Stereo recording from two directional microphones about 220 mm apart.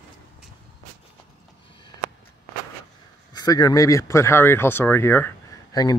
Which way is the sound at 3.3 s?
15° left (ahead or behind).